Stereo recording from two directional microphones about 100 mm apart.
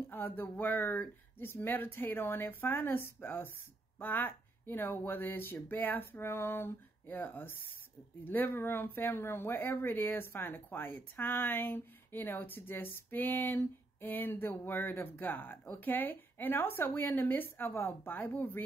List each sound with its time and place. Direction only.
0.1 s speech: 20° left (ahead or behind)